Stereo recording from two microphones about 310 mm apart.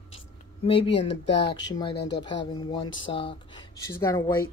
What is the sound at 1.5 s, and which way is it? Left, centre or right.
Speech, centre.